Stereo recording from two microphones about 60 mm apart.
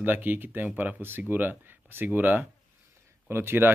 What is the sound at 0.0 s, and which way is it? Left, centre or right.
Speech, right.